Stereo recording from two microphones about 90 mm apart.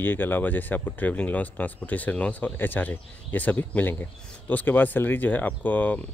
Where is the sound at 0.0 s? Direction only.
20° left (ahead or behind).